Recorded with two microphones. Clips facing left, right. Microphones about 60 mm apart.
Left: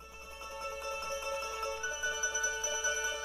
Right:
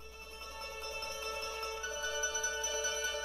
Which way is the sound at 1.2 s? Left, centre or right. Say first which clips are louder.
Left 3 dB; centre.